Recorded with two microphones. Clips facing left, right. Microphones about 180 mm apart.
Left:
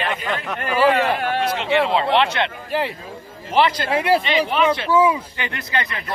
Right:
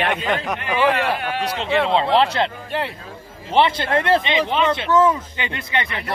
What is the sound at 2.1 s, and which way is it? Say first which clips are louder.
Speech: right 1 dB; 35° right (ahead or behind).